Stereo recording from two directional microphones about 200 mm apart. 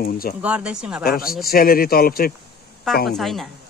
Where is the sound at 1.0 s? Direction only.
50° left (ahead or behind).